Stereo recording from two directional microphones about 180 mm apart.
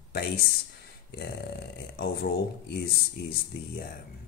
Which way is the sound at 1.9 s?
55° left (ahead or behind).